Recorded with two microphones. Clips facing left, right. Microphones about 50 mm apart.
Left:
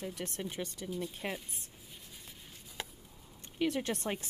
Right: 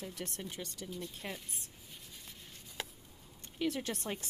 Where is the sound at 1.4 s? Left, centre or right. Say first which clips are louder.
Left 1 dB; centre.